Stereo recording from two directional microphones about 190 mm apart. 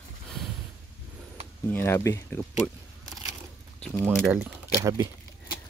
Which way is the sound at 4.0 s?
10° right (ahead or behind).